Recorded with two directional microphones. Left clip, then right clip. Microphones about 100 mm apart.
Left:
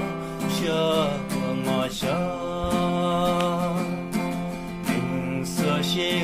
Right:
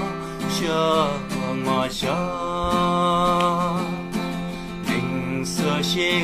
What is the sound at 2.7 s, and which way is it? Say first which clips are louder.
Music: right 5 dB; 25° left (ahead or behind).